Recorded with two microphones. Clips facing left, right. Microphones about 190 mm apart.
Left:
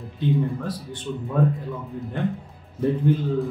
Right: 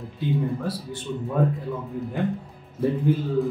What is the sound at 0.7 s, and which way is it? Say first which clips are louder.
Speech: right 1 dB; 10° right (ahead or behind).